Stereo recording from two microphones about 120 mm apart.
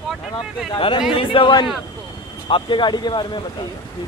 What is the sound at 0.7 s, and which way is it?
A man's voice, 40° left (ahead or behind).